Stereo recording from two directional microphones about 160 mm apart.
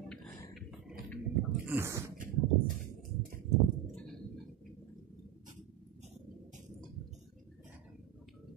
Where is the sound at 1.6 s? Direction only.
15° right (ahead or behind).